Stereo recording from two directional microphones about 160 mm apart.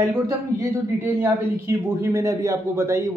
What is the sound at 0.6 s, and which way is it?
A man's voice, 10° right (ahead or behind).